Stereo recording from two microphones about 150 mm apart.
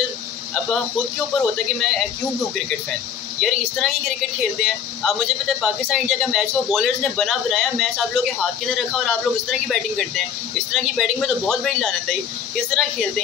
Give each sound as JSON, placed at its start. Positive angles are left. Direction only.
{"t": 1.4, "sound": "speech", "side_deg": 5}
{"t": 3.3, "sound": "speech", "side_deg": 0}